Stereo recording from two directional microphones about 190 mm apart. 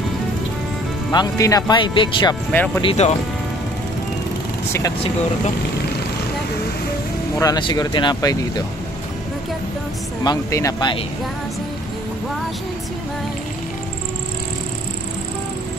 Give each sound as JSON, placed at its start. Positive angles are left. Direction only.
{"t": 1.1, "sound": "speech", "side_deg": 20}
{"t": 2.5, "sound": "speech", "side_deg": 10}
{"t": 2.8, "sound": "speech", "side_deg": 30}
{"t": 7.3, "sound": "speech", "side_deg": 20}
{"t": 10.2, "sound": "speech", "side_deg": 20}